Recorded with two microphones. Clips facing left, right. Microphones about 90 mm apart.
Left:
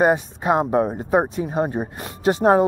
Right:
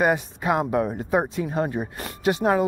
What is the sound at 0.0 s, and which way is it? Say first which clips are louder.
A woman's voice: left 4 dB; 25° left (ahead or behind).